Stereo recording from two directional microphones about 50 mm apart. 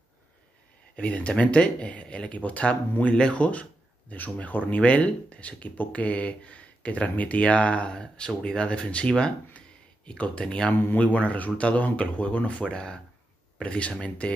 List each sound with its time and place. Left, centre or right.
0.9 s speech: left